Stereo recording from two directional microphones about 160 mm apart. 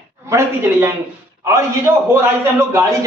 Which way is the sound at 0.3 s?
15° right (ahead or behind).